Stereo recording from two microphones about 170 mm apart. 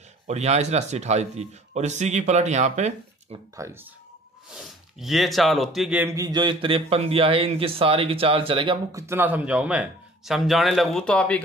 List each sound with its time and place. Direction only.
0.3 s a man's voice: 40° right (ahead or behind)
3.5 s speech: 15° right (ahead or behind)
4.5 s speech: centre (ahead or behind); by 8.7 s 30° right (ahead or behind)
8.9 s a man's voice: 15° right (ahead or behind); by 11.4 s 5° left (ahead or behind)